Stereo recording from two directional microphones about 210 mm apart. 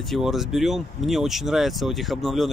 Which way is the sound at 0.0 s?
Centre (ahead or behind).